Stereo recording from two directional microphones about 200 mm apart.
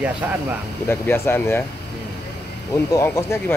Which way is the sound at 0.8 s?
10° left (ahead or behind).